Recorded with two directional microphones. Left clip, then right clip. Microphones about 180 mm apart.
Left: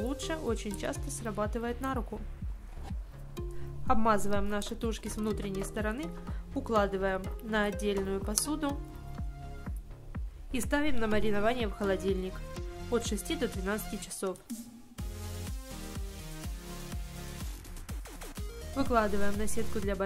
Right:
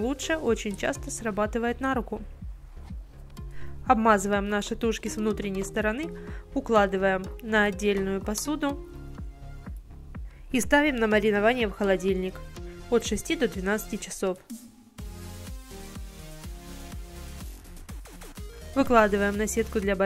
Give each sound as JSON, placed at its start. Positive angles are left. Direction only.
{"t": 0.0, "sound": "a woman's voice", "side_deg": -25}
{"t": 3.8, "sound": "a woman's voice", "side_deg": -25}
{"t": 10.5, "sound": "a woman's voice", "side_deg": -30}
{"t": 14.5, "sound": "music", "side_deg": 0}
{"t": 18.8, "sound": "a woman's voice", "side_deg": -30}